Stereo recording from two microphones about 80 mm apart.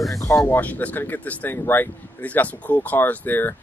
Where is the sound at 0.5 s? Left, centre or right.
Left.